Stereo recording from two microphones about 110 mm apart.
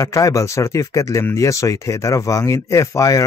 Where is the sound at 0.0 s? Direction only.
30° left (ahead or behind).